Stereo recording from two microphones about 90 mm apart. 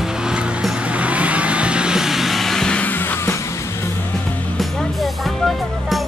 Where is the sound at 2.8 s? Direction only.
20° left (ahead or behind).